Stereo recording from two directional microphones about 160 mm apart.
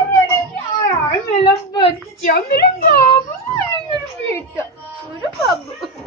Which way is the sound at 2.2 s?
75° left (ahead or behind).